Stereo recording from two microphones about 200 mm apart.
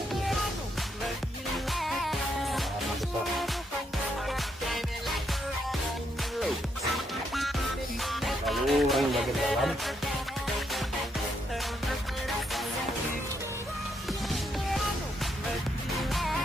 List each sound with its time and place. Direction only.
1.7 s music: centre (ahead or behind)
4.3 s music: centre (ahead or behind)
8.0 s music: centre (ahead or behind)
16.1 s music: centre (ahead or behind)